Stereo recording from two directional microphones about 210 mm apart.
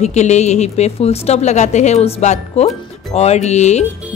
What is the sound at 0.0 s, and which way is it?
Speech, 35° left (ahead or behind).